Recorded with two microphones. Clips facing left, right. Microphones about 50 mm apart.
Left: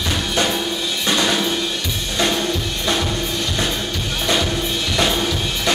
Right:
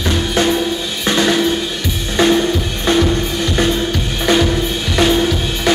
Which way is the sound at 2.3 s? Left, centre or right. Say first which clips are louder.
Right 6 dB; right.